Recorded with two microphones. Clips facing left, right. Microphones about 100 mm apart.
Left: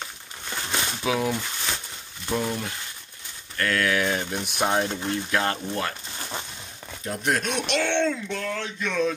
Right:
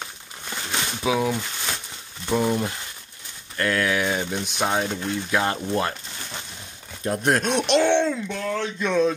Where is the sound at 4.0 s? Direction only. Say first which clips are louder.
Right 1 dB; 10° right (ahead or behind).